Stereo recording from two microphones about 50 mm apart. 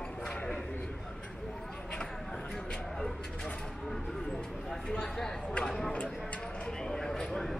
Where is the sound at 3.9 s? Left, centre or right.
Centre.